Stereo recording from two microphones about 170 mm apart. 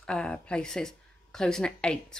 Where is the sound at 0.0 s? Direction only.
5° left (ahead or behind).